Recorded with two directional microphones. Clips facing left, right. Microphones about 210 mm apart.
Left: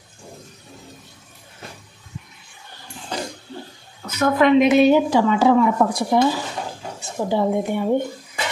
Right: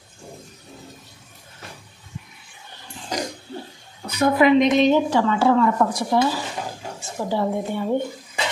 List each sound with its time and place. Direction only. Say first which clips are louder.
4.1 s a woman's voice: even; 10° right (ahead or behind)
4.6 s speech: left 3 dB; 5° left (ahead or behind)